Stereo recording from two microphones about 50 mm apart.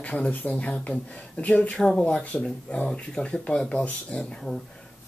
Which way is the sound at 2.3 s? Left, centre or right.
Left.